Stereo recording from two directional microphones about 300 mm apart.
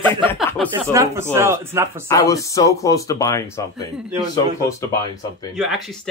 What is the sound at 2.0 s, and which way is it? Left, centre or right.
A man's voice, centre.